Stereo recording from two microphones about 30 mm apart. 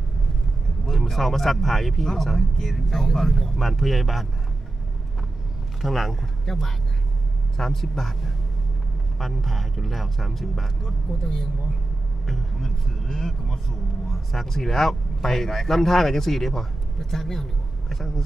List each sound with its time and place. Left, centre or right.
0.8 s speech: centre
5.8 s speech: centre
6.4 s speech: centre
11.1 s speech: centre
12.3 s speech: centre